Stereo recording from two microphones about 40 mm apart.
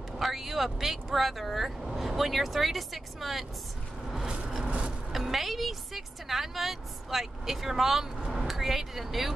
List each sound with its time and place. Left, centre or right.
0.2 s vehicle: centre
0.7 s a woman's voice: centre
4.3 s vehicle: right
5.1 s a woman's voice: centre